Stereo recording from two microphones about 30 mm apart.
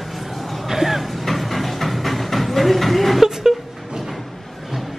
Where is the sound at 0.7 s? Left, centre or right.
Centre.